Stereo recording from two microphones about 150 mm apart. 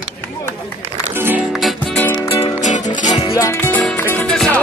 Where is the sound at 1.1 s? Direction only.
15° right (ahead or behind).